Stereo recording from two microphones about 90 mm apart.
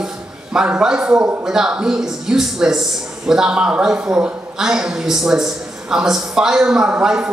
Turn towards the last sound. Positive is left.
turn(degrees=-10)  # may be behind; listen again after turning